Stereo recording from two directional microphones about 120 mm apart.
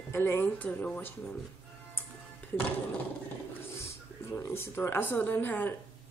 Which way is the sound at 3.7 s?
20° left (ahead or behind).